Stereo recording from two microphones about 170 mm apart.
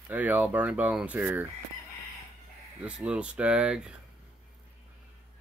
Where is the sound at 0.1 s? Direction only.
10° right (ahead or behind).